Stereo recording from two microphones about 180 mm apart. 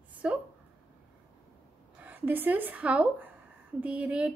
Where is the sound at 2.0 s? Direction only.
10° right (ahead or behind).